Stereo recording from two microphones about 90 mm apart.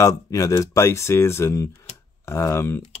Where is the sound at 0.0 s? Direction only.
35° left (ahead or behind).